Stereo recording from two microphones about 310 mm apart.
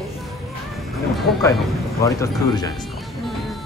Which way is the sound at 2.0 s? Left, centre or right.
Centre.